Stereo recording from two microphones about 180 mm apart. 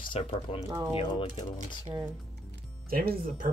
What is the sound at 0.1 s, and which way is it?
Speech, 30° left (ahead or behind).